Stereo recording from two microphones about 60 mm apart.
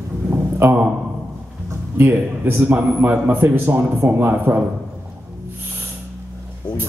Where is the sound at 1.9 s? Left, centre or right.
Right.